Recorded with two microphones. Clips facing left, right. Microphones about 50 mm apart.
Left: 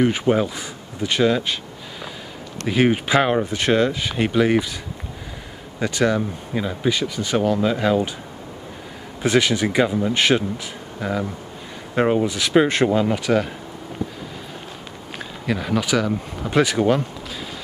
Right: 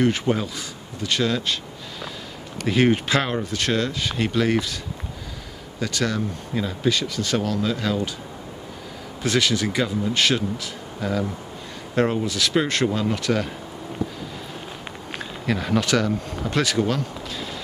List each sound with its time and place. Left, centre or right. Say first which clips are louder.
0.0 s speech: left 3 dB; centre
5.8 s speech: left 5 dB; centre
9.2 s speech: left 3 dB; left
15.1 s speech: left 1 dB; centre